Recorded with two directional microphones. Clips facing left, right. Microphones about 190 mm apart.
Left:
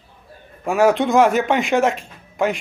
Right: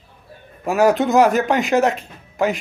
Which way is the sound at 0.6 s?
Centre (ahead or behind).